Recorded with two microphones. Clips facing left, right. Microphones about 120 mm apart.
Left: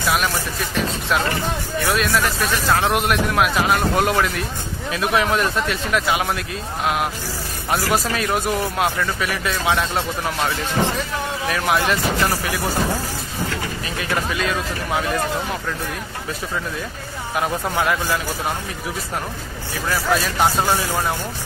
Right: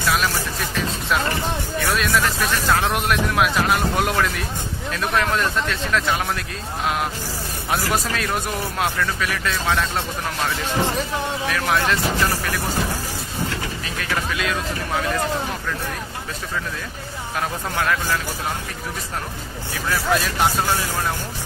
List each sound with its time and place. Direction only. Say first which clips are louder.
0.0 s music: left 1 dB; centre (ahead or behind)
1.8 s speech: left 1 dB; centre (ahead or behind)
13.8 s speech: left 2 dB; 5° left (ahead or behind)
17.4 s speech: left 3 dB; 10° left (ahead or behind)
19.9 s speech: left 1 dB; centre (ahead or behind)
20.5 s speech: left 3 dB; 15° left (ahead or behind)